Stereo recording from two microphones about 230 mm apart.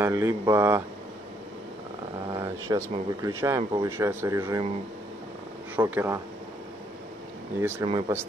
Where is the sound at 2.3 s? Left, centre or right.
Centre.